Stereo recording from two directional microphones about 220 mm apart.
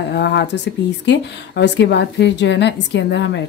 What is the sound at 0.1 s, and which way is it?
A woman's voice, 50° left (ahead or behind).